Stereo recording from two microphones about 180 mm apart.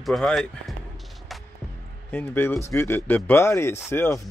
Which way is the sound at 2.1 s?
10° left (ahead or behind).